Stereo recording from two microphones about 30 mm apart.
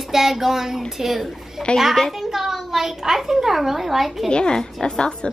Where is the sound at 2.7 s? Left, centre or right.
Centre.